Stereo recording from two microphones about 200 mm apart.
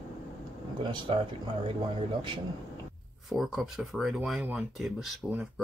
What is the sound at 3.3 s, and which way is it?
Speech, centre (ahead or behind).